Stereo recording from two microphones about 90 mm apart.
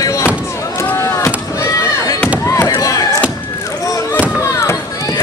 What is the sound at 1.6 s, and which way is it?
Fireworks, 35° left (ahead or behind).